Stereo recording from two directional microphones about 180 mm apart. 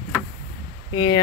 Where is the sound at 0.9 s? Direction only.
25° left (ahead or behind).